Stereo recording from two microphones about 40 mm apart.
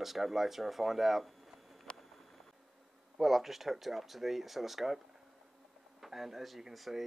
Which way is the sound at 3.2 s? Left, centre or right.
Centre.